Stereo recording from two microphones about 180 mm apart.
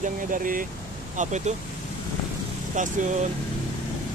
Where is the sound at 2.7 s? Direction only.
45° right (ahead or behind).